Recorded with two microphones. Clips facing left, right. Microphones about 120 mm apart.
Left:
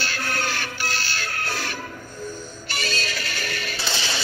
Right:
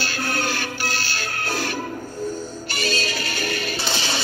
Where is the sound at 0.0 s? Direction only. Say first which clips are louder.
Right 2 dB; 40° right (ahead or behind).